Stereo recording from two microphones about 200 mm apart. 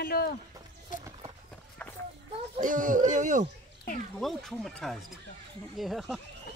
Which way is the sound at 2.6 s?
40° right (ahead or behind).